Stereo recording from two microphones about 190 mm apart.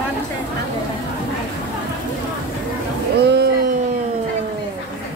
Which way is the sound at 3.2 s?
60° right (ahead or behind).